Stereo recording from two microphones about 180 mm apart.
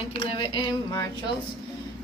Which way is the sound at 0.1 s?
30° left (ahead or behind).